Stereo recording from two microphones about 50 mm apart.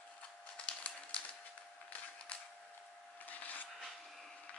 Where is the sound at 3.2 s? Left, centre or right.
Left.